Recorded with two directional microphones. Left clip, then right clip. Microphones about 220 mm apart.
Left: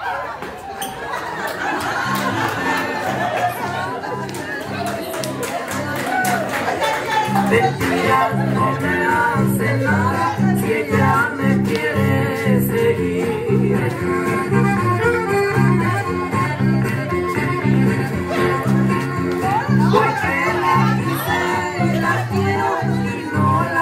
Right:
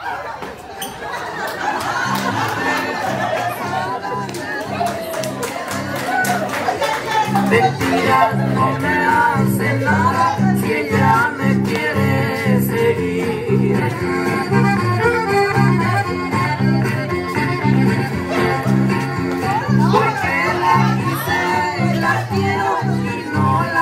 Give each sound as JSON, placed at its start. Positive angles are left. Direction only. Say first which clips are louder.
{"t": 8.1, "sound": "music", "louder": "right 3 dB", "side_deg": -30}
{"t": 22.0, "sound": "music", "louder": "right 4 dB", "side_deg": -30}